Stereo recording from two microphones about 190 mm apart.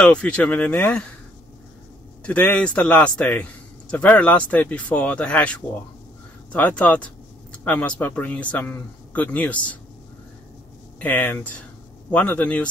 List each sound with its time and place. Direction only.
0.0 s speech: 5° left (ahead or behind)
2.2 s speech: 5° left (ahead or behind)
11.0 s speech: 10° left (ahead or behind)